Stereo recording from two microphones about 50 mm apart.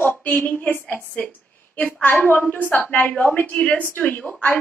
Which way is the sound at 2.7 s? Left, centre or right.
Left.